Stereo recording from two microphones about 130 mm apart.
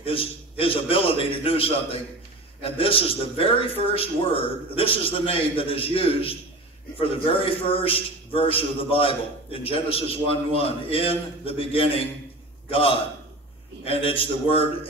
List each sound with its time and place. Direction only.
0.0 s a man's voice: 45° left (ahead or behind)
13.8 s a man's voice: 45° left (ahead or behind)